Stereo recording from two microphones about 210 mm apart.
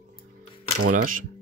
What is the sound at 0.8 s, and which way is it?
Speech, 40° right (ahead or behind).